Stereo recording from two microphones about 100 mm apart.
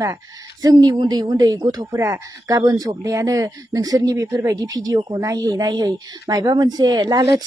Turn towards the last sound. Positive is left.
turn(degrees=-35)  # may be behind; listen again after turning